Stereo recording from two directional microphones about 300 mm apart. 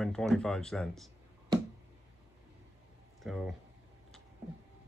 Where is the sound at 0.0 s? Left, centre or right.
Centre.